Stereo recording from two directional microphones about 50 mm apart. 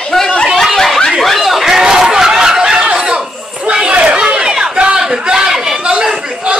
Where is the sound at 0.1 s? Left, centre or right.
Centre.